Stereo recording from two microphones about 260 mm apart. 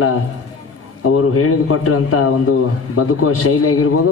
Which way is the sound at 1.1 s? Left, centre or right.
Left.